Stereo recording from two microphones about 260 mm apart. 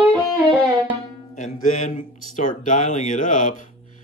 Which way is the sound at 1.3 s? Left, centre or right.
Left.